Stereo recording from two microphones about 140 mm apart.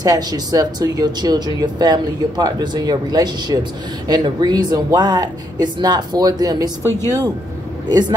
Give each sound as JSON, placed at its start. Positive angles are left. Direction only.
{"t": 0.0, "sound": "speech", "side_deg": -25}